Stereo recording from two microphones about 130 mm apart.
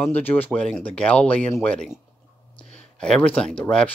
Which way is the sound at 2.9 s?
5° left (ahead or behind).